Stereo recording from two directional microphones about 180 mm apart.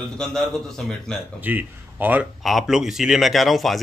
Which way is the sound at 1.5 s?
10° right (ahead or behind).